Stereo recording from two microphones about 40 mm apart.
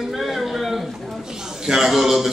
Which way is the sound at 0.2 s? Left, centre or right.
Centre.